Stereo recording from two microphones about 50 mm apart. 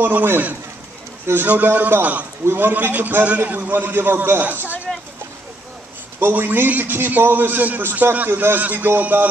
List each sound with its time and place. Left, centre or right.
0.0 s a man's voice: right
2.7 s a man's voice: right
6.3 s a man's voice: right